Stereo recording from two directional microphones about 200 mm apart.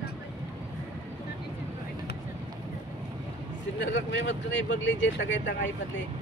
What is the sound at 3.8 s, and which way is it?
Speech, 65° left (ahead or behind).